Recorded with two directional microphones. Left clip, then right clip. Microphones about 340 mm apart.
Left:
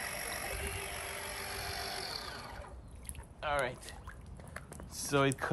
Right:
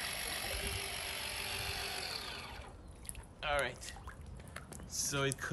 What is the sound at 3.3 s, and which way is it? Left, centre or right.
Boat, centre.